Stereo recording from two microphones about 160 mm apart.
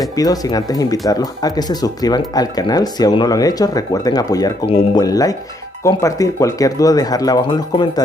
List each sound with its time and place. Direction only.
0.1 s speech: 25° left (ahead or behind)